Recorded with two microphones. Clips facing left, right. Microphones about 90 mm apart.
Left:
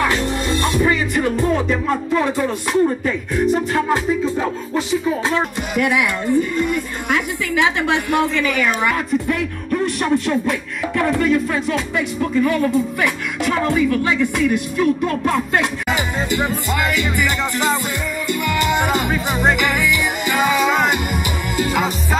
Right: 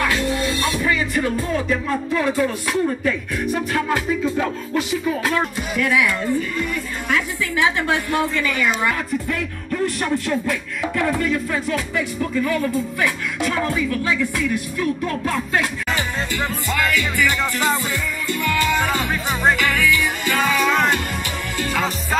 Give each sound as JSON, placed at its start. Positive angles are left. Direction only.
{"t": 0.0, "sound": "music", "side_deg": 25}
{"t": 10.0, "sound": "music", "side_deg": 20}